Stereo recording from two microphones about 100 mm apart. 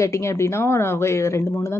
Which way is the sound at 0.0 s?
30° left (ahead or behind).